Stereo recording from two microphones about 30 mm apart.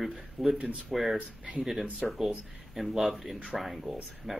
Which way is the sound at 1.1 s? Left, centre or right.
Right.